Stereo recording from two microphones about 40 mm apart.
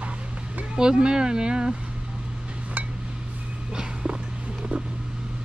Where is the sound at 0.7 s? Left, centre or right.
Centre.